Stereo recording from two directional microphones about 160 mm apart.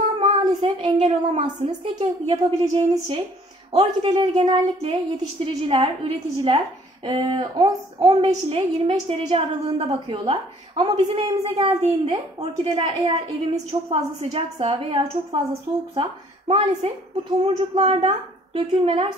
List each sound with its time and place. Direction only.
0.2 s child singing: 35° right (ahead or behind)
2.0 s a woman's voice: 35° right (ahead or behind)